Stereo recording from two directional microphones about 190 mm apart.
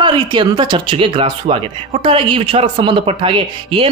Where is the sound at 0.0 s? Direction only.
25° right (ahead or behind).